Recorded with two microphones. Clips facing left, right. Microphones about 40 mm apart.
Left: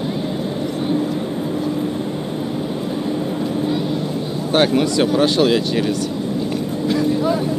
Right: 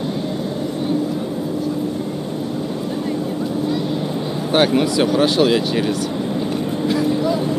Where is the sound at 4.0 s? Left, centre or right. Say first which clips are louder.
Even; centre.